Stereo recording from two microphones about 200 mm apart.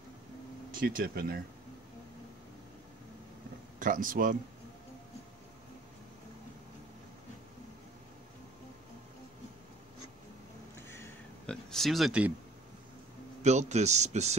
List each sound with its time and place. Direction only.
0.7 s speech: 45° right (ahead or behind)
3.8 s a man's voice: 40° right (ahead or behind)
10.9 s a sound: 10° left (ahead or behind)
13.4 s a man's voice: 35° right (ahead or behind)